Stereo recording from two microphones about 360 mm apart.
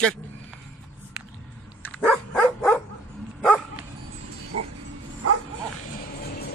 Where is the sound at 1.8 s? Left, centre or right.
Centre.